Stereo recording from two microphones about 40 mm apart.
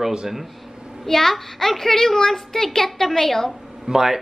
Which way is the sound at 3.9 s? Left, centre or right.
Centre.